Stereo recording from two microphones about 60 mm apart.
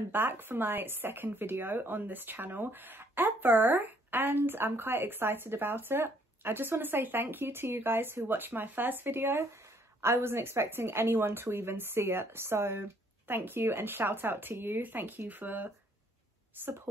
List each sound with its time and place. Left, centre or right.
0.1 s speech: right